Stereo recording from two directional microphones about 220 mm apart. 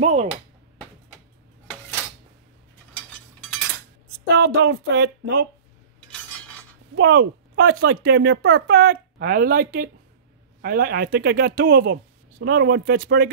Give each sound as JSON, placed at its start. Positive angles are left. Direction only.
{"t": 0.0, "sound": "speech", "side_deg": -30}
{"t": 4.4, "sound": "speech", "side_deg": -50}
{"t": 7.0, "sound": "speech", "side_deg": -50}